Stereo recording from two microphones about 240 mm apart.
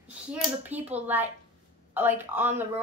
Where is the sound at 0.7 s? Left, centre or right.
Centre.